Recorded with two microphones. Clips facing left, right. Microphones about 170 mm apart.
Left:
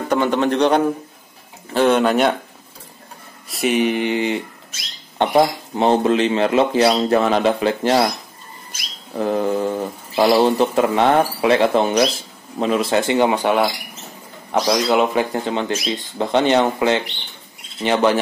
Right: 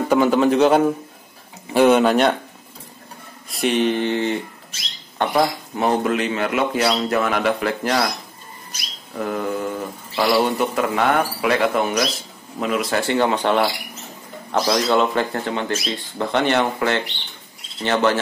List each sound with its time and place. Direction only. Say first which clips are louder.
0.1 s a man's voice: right 2 dB; 5° right (ahead or behind)
3.4 s speech: left 1 dB; centre (ahead or behind); by 8.1 s 25° left (ahead or behind)
9.1 s speech: left 5 dB; 30° left (ahead or behind); by 13.6 s 10° left (ahead or behind)
14.7 s speech: left 1 dB; 10° left (ahead or behind)